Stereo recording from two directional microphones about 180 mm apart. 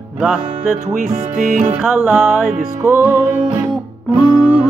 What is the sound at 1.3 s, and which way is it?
Music, 45° right (ahead or behind).